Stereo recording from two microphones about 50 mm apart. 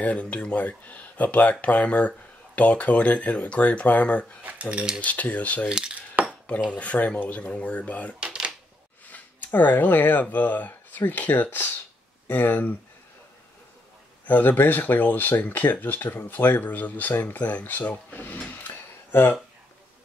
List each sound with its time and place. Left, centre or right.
0.0 s speech: left
4.4 s cutlery: right
4.6 s speech: centre
5.0 s speech: left
5.7 s speech: centre
6.2 s cutlery: right
6.7 s speech: left
8.2 s a sound: right
9.0 s a sound: left
10.3 s speech: left
14.2 s speech: left
17.4 s speech: left